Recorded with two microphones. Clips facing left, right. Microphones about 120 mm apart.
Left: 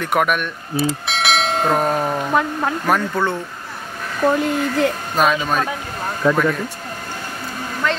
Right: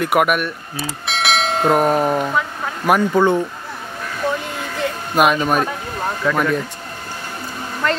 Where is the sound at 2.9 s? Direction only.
15° right (ahead or behind).